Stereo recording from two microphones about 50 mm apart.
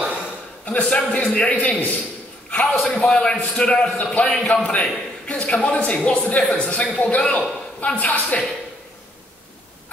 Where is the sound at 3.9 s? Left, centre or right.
Left.